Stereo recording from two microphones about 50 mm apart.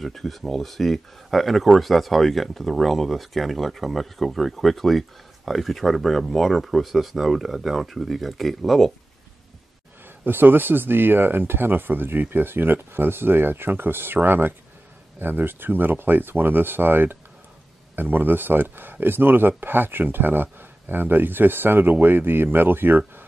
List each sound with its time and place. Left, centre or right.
0.0 s speech: centre
10.2 s speech: right